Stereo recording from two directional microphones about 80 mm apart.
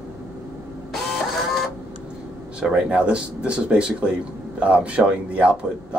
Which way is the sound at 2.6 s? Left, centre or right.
Centre.